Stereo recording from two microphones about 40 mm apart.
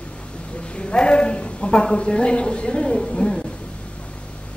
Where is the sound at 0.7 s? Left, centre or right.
Left.